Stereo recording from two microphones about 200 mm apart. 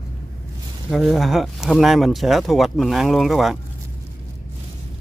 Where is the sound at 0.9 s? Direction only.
Centre (ahead or behind).